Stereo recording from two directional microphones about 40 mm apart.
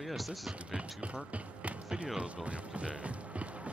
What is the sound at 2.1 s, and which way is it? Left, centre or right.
Speech, right.